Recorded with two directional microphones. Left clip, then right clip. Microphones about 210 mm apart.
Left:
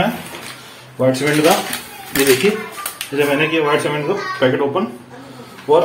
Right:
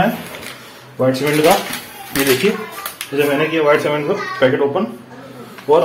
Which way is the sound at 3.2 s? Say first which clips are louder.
Even; 5° right (ahead or behind).